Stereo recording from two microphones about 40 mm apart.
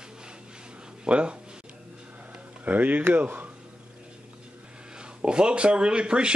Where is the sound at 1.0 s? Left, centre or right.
Right.